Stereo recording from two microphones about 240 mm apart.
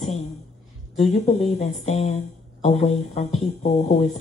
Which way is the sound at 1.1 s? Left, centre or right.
Left.